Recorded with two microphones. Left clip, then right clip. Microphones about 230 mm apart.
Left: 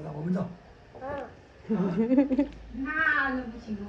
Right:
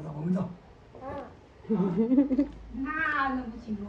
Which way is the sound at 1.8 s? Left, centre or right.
Centre.